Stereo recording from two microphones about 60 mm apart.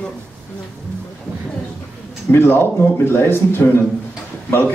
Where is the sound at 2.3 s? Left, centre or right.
Left.